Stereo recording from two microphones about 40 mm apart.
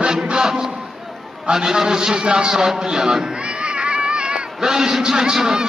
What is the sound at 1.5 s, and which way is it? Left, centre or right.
A man's voice, centre.